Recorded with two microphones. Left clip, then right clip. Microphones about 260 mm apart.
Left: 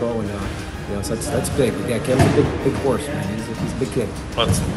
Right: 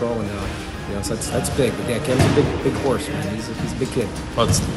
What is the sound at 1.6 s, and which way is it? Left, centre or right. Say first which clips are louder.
Speech: left 1 dB; centre.